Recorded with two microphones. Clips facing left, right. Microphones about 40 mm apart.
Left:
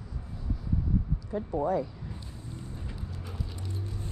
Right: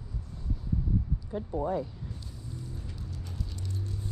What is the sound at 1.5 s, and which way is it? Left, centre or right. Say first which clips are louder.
Speech: left 3 dB; left.